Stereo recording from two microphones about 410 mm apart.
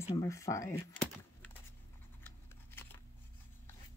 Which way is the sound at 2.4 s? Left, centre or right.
Centre.